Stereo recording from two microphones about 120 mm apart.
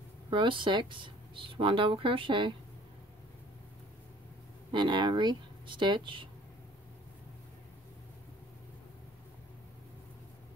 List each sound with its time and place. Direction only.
0.3 s speech: 45° right (ahead or behind)
4.7 s speech: 40° right (ahead or behind)